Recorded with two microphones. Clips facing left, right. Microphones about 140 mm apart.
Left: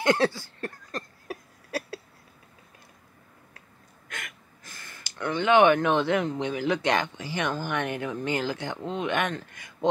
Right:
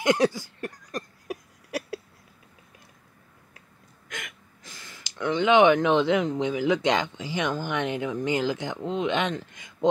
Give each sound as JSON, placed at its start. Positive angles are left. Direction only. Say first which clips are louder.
{"t": 0.0, "sound": "a sound", "louder": "right 1 dB", "side_deg": -15}
{"t": 4.1, "sound": "gasp", "louder": "right 1 dB", "side_deg": -20}
{"t": 6.4, "sound": "speech", "louder": "right 3 dB", "side_deg": -15}